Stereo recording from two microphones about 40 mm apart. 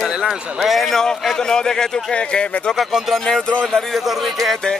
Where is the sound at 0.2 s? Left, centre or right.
Centre.